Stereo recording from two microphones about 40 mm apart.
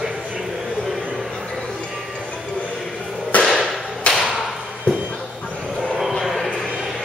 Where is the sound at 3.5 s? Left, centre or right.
Centre.